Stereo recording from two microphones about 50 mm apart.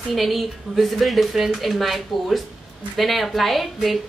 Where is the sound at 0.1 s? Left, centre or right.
Centre.